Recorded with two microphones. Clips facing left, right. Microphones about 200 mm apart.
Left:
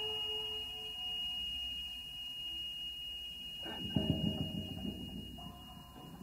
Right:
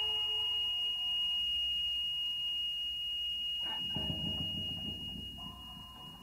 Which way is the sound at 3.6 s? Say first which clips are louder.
Left 8 dB; 45° left (ahead or behind).